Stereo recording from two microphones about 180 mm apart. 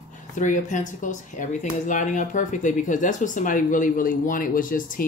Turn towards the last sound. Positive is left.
turn(degrees=50)  # may be behind; listen again after turning